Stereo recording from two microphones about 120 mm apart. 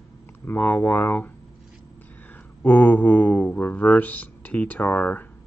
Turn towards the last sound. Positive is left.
turn(degrees=10)  # may be behind; listen again after turning